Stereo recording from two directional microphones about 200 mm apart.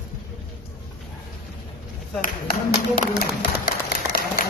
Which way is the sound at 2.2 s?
45° left (ahead or behind).